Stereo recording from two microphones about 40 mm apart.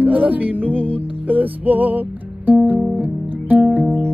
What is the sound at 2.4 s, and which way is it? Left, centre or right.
Guitar, right.